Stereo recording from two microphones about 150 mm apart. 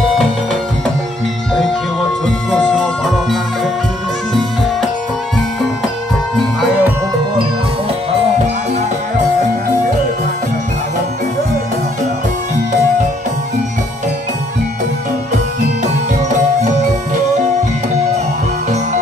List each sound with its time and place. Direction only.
2.5 s music: 5° left (ahead or behind)
6.6 s music: 10° right (ahead or behind)
15.8 s music: 55° right (ahead or behind)